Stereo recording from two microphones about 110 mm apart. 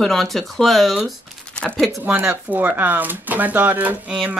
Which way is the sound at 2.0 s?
20° right (ahead or behind).